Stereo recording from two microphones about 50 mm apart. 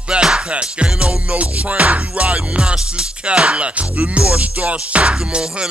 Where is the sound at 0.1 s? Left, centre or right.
Centre.